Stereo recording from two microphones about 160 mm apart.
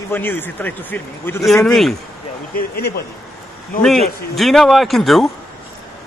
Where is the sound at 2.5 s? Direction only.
80° left.